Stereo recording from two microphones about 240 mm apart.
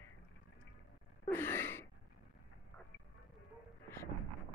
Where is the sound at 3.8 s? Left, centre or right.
Centre.